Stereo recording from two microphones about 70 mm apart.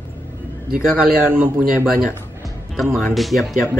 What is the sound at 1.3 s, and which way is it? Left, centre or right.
Speech, right.